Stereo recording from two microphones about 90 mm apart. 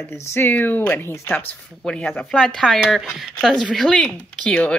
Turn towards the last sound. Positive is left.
turn(degrees=10)  # may be behind; listen again after turning